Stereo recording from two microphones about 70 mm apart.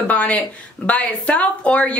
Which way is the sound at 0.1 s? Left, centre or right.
Left.